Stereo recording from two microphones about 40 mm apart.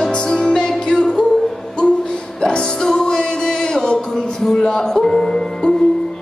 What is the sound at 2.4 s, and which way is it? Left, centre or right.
Music, left.